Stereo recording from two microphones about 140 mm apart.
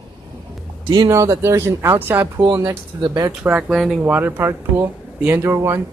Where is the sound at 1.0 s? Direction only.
20° right (ahead or behind).